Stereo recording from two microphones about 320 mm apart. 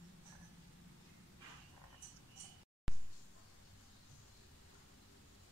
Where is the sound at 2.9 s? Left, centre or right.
Centre.